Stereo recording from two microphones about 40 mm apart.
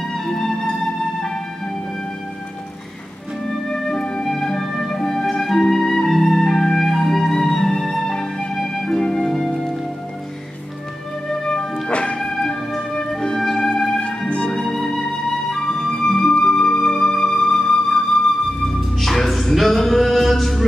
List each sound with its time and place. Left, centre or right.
0.1 s music: centre
3.4 s music: centre
5.2 s flute: centre
8.7 s music: centre
11.4 s music: centre
11.9 s music: left
12.2 s music: centre
14.7 s flute: centre
18.9 s music: centre